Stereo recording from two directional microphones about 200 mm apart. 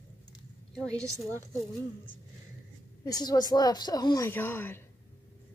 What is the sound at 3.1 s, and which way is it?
Speech, 20° left (ahead or behind).